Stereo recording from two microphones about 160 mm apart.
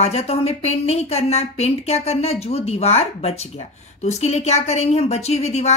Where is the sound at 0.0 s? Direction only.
40° left (ahead or behind).